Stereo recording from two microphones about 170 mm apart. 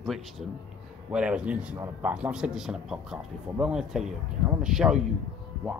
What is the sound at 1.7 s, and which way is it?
Speech, 20° right (ahead or behind).